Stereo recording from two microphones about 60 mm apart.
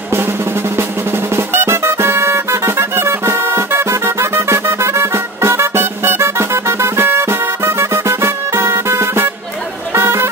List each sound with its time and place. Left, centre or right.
0.7 s music: right